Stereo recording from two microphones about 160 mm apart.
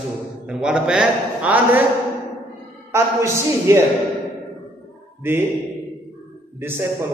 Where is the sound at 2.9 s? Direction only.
15° right (ahead or behind).